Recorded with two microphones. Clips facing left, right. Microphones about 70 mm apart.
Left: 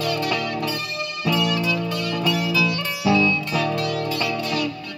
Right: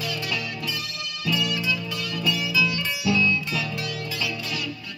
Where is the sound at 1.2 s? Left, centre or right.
Left.